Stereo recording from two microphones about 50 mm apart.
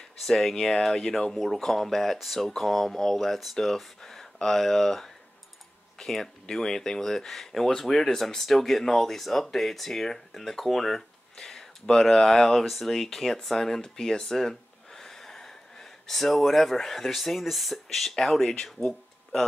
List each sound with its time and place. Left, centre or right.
0.2 s speech: centre
18.5 s speech: centre